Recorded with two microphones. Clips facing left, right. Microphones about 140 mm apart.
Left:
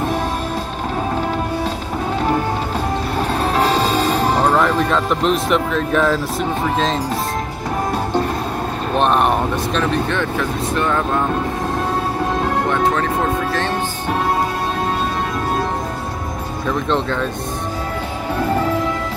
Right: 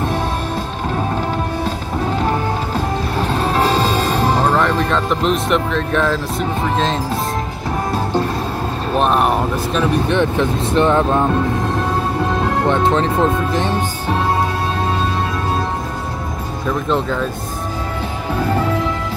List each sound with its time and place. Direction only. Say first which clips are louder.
3.9 s music: even; 10° left (ahead or behind)
4.5 s speech: even; 5° left (ahead or behind)
8.9 s a sound: even; centre (ahead or behind)
10.0 s speech: right 4 dB; 20° right (ahead or behind)
12.6 s speech: right 2 dB; 25° right (ahead or behind)
16.6 s speech: right 1 dB; 5° right (ahead or behind)